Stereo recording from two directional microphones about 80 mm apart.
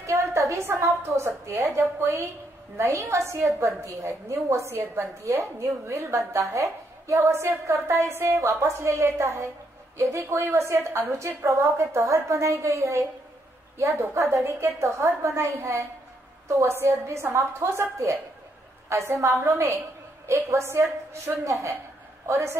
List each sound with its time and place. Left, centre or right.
0.0 s a sound: right
0.7 s a woman's voice: right
20.2 s a woman's voice: right